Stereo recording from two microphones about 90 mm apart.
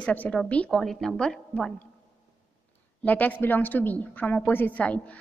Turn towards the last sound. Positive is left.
turn(degrees=15)  # may be behind; listen again after turning